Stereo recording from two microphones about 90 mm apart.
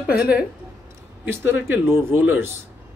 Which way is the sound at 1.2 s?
25° right (ahead or behind).